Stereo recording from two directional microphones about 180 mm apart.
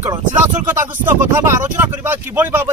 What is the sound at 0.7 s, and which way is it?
Speech, 10° right (ahead or behind).